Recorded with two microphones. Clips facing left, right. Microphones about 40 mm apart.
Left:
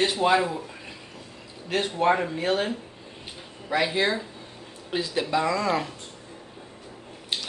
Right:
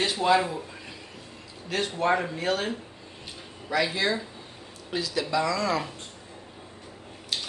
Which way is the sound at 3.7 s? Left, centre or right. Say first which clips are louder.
Left 2 dB; left.